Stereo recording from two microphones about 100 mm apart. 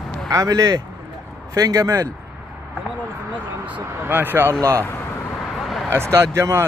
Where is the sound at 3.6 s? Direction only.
15° right (ahead or behind).